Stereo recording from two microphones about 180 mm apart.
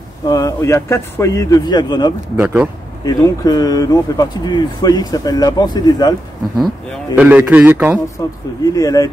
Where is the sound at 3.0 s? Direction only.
20° left (ahead or behind).